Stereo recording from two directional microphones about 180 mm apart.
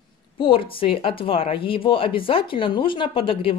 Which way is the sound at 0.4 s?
30° left (ahead or behind).